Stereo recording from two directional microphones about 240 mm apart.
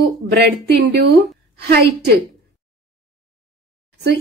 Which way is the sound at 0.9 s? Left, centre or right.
Right.